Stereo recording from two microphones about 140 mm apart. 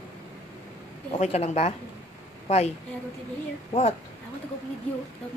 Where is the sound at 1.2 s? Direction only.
55° left (ahead or behind).